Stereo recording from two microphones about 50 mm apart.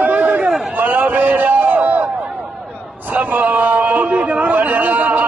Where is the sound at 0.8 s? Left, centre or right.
Right.